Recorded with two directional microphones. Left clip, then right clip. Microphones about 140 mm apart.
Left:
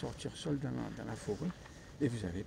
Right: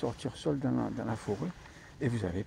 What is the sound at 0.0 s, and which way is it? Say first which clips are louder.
Speech: right 8 dB; 20° left (ahead or behind).